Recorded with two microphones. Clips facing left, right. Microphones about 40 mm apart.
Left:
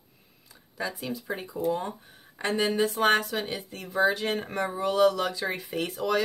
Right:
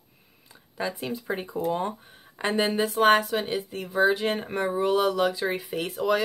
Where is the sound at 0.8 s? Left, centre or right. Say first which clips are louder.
Right 2 dB; right.